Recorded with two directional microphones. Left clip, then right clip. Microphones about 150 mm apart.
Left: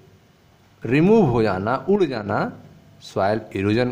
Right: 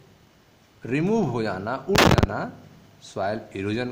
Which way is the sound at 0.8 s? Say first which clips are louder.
Left 8 dB; 35° left (ahead or behind).